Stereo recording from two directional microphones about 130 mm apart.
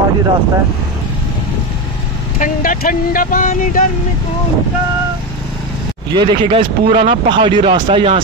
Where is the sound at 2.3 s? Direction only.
90° left.